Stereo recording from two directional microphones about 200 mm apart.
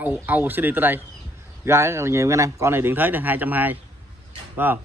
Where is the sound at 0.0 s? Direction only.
10° right (ahead or behind).